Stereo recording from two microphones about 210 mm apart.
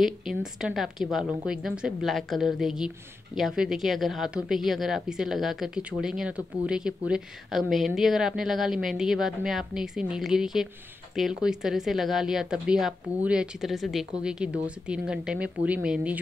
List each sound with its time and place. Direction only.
0.0 s a woman's voice: centre (ahead or behind)